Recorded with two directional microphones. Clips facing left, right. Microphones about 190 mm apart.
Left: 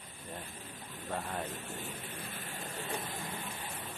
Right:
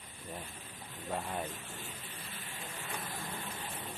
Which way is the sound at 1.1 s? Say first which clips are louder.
Even; centre (ahead or behind).